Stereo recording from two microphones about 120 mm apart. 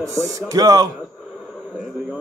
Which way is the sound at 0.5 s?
30° right (ahead or behind).